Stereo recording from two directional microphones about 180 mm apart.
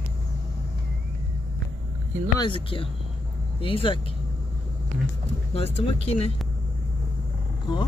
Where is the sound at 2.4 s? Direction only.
30° left (ahead or behind).